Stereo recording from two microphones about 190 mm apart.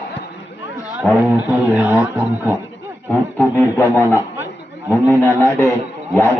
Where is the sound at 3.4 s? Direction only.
15° left (ahead or behind).